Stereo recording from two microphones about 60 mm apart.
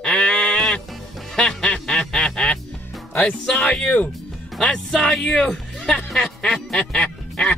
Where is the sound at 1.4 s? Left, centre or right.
Centre.